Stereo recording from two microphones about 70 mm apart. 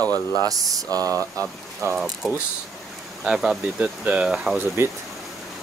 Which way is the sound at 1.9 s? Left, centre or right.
Centre.